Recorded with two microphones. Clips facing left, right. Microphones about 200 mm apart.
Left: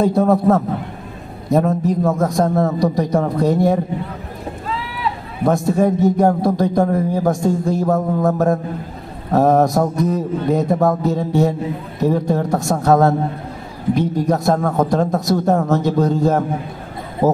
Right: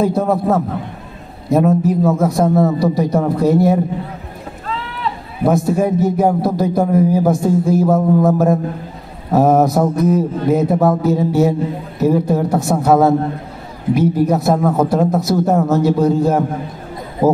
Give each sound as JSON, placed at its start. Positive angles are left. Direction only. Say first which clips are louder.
{"t": 0.0, "sound": "a man's voice", "louder": "left 1 dB", "side_deg": 0}
{"t": 5.4, "sound": "a man's voice", "louder": "right 1 dB", "side_deg": -5}